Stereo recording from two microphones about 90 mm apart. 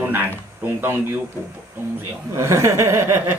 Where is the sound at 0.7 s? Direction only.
25° right (ahead or behind).